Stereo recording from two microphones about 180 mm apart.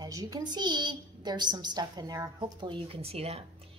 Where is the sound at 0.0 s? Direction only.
20° right (ahead or behind).